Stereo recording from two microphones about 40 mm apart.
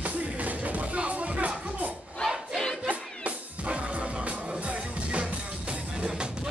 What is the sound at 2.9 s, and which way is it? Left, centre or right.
Music, right.